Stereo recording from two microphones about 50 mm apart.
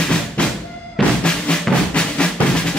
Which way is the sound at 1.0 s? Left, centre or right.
Centre.